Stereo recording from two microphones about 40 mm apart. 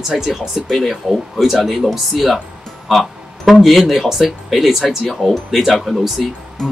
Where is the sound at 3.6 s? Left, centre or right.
Centre.